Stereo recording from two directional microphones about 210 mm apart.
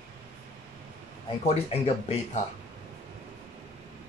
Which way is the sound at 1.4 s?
30° left (ahead or behind).